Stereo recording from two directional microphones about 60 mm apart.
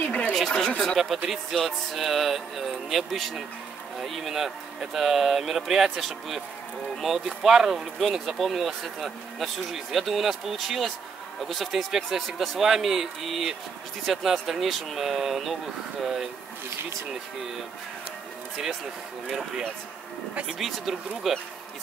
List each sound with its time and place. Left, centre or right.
0.0 s a sound: left
0.3 s speech: centre
20.4 s speech: centre